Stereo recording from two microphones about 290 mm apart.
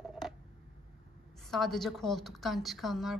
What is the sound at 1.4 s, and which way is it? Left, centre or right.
A woman's voice, centre.